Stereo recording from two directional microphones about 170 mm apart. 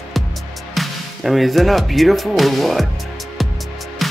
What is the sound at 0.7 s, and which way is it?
Speech, centre (ahead or behind).